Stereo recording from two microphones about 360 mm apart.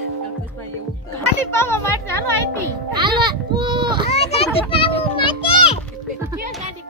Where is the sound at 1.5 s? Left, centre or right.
Centre.